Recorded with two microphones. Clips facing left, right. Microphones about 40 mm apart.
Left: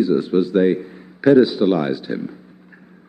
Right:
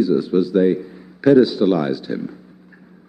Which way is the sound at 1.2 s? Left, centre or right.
Centre.